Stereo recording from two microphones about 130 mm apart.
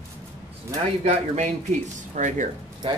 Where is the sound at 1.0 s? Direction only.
60° right (ahead or behind).